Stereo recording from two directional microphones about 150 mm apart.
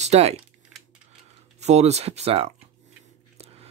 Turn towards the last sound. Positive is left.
turn(degrees=-40)  # may be behind; listen again after turning